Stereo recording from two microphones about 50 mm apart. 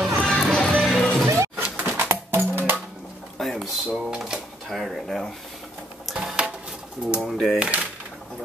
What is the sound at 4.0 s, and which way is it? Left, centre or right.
Speech, centre.